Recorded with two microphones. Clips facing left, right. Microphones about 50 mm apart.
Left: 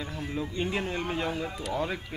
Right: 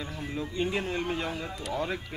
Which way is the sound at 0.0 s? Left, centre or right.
Centre.